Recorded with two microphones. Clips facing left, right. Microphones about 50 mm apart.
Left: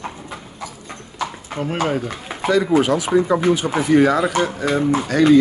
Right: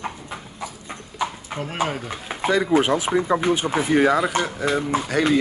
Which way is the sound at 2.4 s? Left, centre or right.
Right.